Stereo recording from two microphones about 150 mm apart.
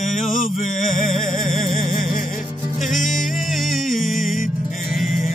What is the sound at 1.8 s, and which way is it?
Music, 65° left (ahead or behind).